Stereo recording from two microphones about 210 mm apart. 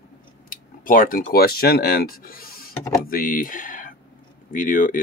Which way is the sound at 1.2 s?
45° left (ahead or behind).